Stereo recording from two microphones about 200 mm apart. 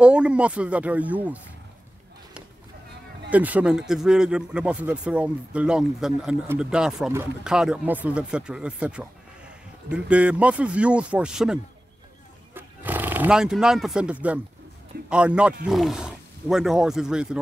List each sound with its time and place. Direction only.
0.0 s speech: 5° right (ahead or behind)
3.3 s a man's voice: 5° right (ahead or behind)